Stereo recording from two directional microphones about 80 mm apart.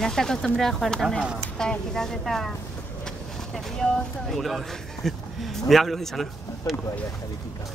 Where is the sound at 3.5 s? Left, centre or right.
Centre.